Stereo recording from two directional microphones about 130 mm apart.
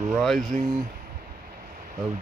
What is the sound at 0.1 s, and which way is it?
Speech, centre (ahead or behind).